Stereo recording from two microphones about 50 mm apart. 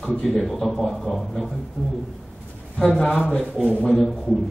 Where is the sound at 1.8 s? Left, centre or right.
Centre.